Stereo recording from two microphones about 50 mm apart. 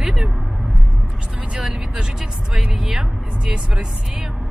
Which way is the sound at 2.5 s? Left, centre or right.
Centre.